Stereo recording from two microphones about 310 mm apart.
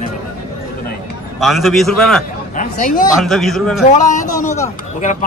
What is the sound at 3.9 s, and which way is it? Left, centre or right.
Speech, left.